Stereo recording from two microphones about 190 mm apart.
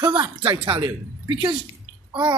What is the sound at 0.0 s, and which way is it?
Speech, 25° right (ahead or behind).